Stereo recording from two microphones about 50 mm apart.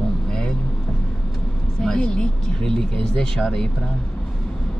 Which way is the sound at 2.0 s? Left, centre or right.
Centre.